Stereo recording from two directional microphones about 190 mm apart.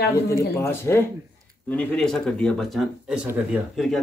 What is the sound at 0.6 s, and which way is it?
Speech, 15° left (ahead or behind).